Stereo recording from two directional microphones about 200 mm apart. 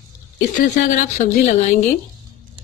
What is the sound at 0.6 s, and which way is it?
Speech, 40° left (ahead or behind).